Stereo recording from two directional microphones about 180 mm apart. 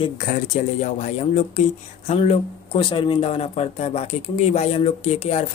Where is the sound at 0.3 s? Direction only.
40° left (ahead or behind).